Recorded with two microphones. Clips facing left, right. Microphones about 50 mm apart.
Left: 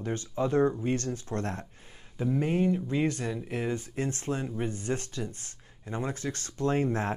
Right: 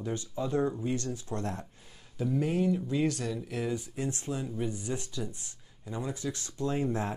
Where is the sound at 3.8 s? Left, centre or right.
Left.